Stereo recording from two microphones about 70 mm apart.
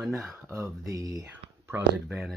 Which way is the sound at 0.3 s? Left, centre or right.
Right.